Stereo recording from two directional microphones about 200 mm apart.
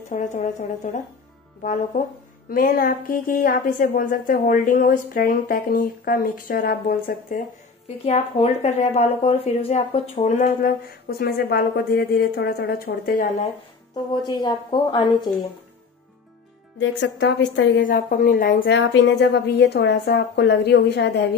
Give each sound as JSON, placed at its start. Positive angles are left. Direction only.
{"t": 0.1, "sound": "a woman's voice", "side_deg": 35}
{"t": 8.0, "sound": "speech", "side_deg": 30}
{"t": 10.6, "sound": "a woman's voice", "side_deg": 50}
{"t": 14.1, "sound": "a woman's voice", "side_deg": 20}
{"t": 17.0, "sound": "a woman's voice", "side_deg": 60}
{"t": 17.8, "sound": "a woman's voice", "side_deg": 45}
{"t": 18.6, "sound": "a woman's voice", "side_deg": 55}